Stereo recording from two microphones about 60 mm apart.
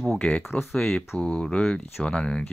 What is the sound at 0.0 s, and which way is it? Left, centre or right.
Speech, centre.